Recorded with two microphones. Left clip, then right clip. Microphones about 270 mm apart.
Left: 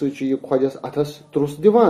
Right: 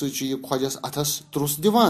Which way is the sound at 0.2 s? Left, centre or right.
Right.